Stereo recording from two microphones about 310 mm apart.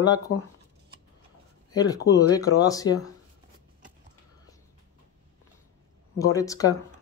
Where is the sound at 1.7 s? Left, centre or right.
Centre.